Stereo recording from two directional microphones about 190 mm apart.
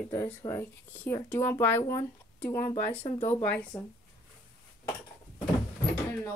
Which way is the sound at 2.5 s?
40° left (ahead or behind).